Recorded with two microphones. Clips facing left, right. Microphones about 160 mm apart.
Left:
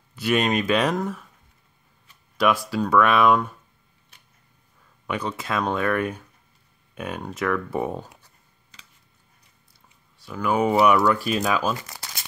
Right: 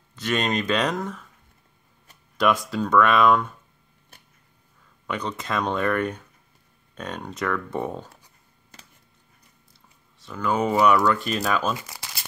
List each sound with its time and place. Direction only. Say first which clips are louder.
0.1 s speech: left 3 dB; 10° left (ahead or behind)
2.3 s speech: left 1 dB; centre (ahead or behind)
5.0 s speech: left 1 dB; 5° left (ahead or behind)
8.7 s a sound: right 4 dB; 50° right (ahead or behind)
10.2 s speech: left 2 dB; 10° left (ahead or behind)